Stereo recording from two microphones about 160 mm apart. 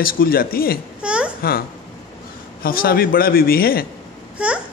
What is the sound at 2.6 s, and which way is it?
A man's voice, 65° left (ahead or behind).